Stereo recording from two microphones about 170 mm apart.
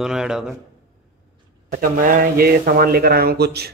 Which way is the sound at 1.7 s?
55° right (ahead or behind).